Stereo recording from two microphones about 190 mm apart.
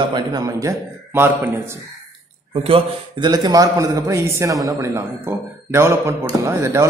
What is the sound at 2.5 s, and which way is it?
A man's voice, 30° right (ahead or behind).